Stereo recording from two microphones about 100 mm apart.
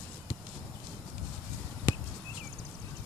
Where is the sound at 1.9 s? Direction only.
25° left (ahead or behind).